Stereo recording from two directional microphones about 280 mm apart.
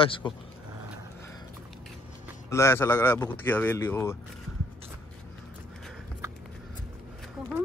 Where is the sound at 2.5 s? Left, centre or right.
Centre.